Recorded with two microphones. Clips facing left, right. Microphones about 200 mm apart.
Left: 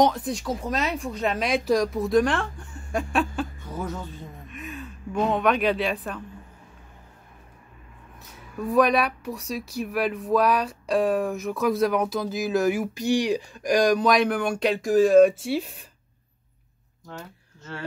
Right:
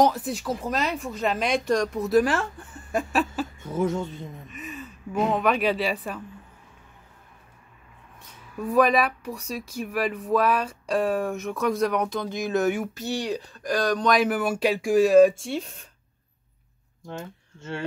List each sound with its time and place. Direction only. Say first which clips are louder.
0.0 s speech: even; 5° right (ahead or behind)
4.5 s speech: left 1 dB; centre (ahead or behind)
8.2 s speech: left 1 dB; centre (ahead or behind)
12.9 s speech: left 6 dB; 15° left (ahead or behind)
17.6 s speech: right 4 dB; 25° right (ahead or behind)